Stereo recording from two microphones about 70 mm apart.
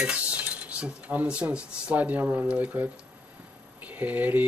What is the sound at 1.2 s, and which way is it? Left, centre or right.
Speech, centre.